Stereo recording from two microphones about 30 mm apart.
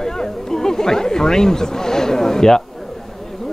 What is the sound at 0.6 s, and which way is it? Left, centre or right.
Speech, centre.